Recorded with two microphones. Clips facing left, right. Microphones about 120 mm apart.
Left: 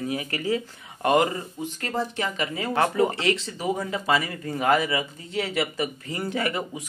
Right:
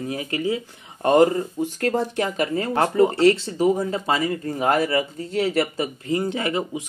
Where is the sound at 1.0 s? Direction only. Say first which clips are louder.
Right 5 dB; 35° right (ahead or behind).